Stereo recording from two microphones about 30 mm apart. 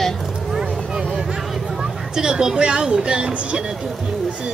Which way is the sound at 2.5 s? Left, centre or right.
Right.